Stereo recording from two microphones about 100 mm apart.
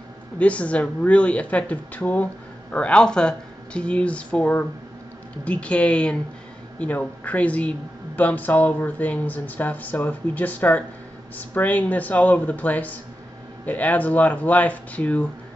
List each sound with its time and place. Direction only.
0.4 s speech: 15° left (ahead or behind)